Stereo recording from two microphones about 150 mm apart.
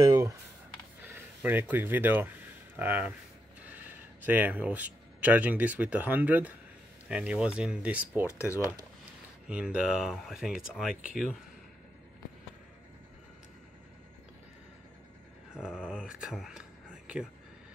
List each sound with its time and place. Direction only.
0.0 s computer keyboard: 25° right (ahead or behind)
1.0 s speech: 15° right (ahead or behind)
8.3 s speech: 20° left (ahead or behind)
9.5 s speech: 5° right (ahead or behind)
15.5 s a sound: 5° right (ahead or behind)
15.9 s speech: 5° right (ahead or behind)